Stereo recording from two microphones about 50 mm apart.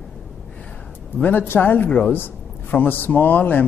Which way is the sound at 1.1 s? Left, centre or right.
Left.